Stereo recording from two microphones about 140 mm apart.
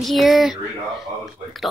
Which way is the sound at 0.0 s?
Centre (ahead or behind).